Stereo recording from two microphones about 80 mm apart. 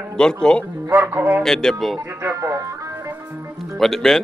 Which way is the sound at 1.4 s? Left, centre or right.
Centre.